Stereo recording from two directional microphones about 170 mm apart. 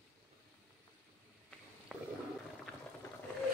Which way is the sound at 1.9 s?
5° right (ahead or behind).